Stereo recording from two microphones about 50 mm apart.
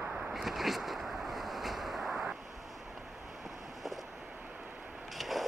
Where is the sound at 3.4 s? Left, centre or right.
Centre.